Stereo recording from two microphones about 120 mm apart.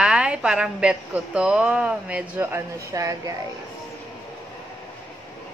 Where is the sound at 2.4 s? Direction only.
25° right (ahead or behind).